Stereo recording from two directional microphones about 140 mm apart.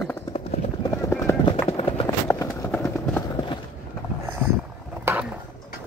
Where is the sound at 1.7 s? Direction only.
45° left (ahead or behind).